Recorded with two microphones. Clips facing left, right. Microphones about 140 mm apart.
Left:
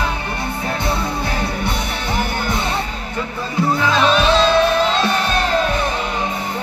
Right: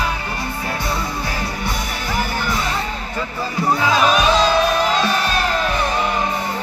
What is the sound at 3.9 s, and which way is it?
Music, 10° right (ahead or behind).